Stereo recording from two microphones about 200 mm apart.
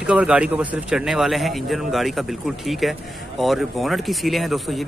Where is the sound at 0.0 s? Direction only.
5° right (ahead or behind).